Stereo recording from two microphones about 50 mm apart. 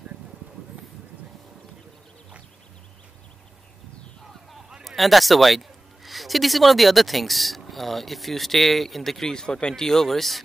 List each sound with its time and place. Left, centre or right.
4.8 s a man's voice: centre
9.3 s speech: centre